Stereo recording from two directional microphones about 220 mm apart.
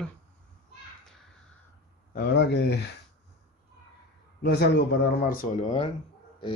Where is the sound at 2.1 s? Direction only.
50° left (ahead or behind).